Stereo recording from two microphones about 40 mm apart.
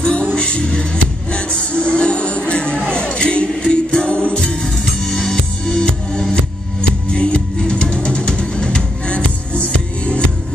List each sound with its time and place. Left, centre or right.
0.0 s music: left
5.0 s music: centre; by 10.2 s left